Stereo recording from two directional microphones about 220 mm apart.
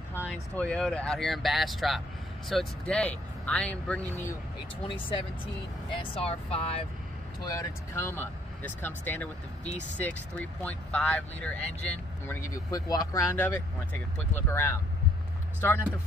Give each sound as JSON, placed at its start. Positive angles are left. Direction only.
{"t": 0.3, "sound": "speech", "side_deg": 5}
{"t": 4.8, "sound": "speech", "side_deg": 25}
{"t": 7.4, "sound": "speech", "side_deg": 15}